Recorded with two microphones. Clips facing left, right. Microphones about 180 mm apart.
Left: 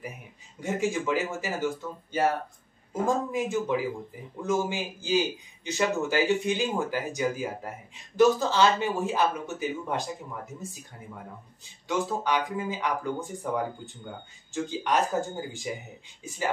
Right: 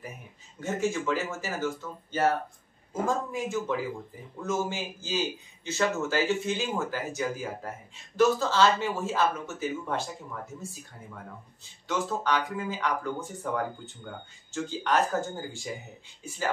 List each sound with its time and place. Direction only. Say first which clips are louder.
0.6 s speech: left 1 dB; 15° left (ahead or behind)
11.9 s speech: left 1 dB; 15° left (ahead or behind)
14.5 s speech: even; 15° left (ahead or behind)